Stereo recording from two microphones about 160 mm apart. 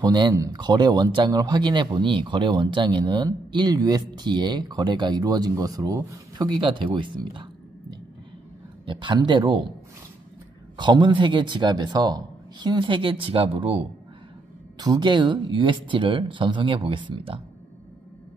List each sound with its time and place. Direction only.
0.0 s speech: 25° right (ahead or behind)
8.8 s speech: 30° right (ahead or behind)
10.8 s speech: 30° right (ahead or behind)